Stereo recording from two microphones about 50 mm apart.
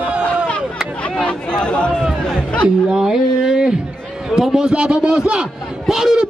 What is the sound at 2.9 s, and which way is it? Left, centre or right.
A man's voice, centre.